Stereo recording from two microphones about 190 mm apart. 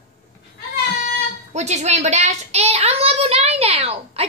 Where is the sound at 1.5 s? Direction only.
35° right (ahead or behind).